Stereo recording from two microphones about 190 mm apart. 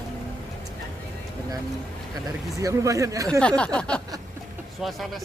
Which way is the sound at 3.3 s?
5° left (ahead or behind).